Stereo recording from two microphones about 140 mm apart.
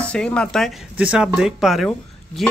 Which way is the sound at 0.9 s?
5° right (ahead or behind).